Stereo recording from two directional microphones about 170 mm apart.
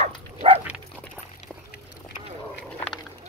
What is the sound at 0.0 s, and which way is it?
Dog, 35° right (ahead or behind).